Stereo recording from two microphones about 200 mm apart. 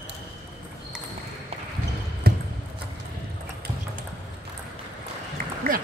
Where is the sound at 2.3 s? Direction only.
50° right (ahead or behind).